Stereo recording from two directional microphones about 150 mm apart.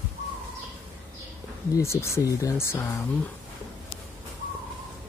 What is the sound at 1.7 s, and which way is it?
Speech, 20° left (ahead or behind).